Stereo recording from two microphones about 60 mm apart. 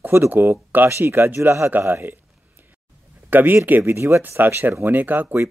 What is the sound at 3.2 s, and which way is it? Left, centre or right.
Speech, right.